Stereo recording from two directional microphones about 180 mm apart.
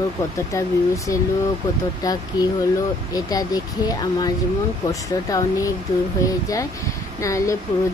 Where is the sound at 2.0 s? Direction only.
20° left (ahead or behind).